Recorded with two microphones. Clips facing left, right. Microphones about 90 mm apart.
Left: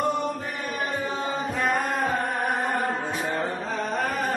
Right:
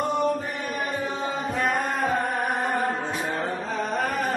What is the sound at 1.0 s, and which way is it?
Music, centre (ahead or behind).